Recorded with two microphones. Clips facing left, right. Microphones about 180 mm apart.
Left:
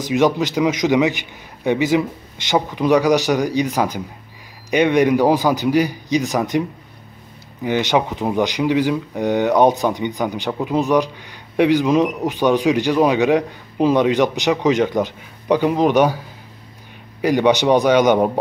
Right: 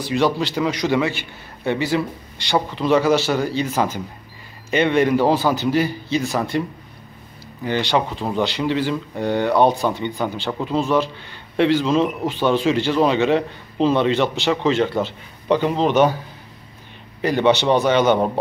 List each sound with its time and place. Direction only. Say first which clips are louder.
0.0 s speech: left 3 dB; 15° left (ahead or behind)
7.6 s speech: left 2 dB; 15° left (ahead or behind)
17.2 s speech: left 2 dB; 10° left (ahead or behind)